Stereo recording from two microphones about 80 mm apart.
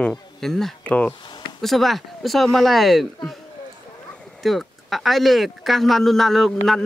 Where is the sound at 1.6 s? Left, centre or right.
Centre.